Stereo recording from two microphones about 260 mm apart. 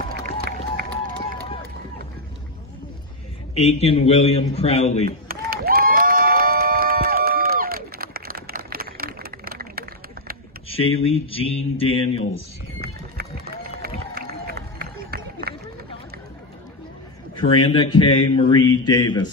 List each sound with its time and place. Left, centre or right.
0.1 s run: right
3.5 s speech: left
5.3 s a sound: right
10.7 s speech: left
12.8 s boat: right
13.8 s run: right
17.4 s speech: centre
18.3 s mantra: centre